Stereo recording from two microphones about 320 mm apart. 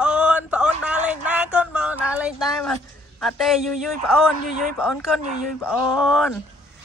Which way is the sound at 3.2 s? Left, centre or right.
Centre.